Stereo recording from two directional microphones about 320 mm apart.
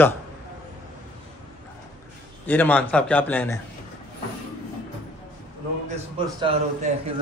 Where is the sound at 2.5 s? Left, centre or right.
Centre.